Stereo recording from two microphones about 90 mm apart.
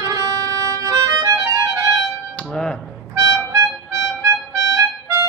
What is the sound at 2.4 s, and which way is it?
Music, 10° left (ahead or behind).